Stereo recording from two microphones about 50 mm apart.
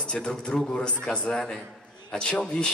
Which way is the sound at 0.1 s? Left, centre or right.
Centre.